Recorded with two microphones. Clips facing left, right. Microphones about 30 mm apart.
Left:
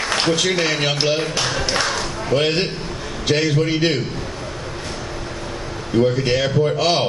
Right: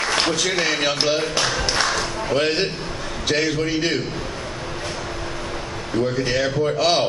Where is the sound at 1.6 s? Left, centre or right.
Centre.